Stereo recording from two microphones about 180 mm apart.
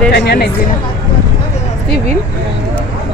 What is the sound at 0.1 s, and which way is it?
Speech, 65° left (ahead or behind).